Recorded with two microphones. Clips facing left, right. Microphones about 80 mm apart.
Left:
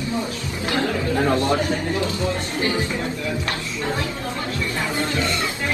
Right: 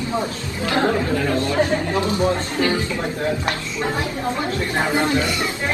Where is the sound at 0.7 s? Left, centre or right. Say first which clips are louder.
Right 3 dB; right.